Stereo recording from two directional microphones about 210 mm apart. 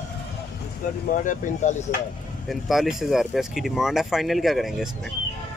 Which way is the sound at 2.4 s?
Centre (ahead or behind).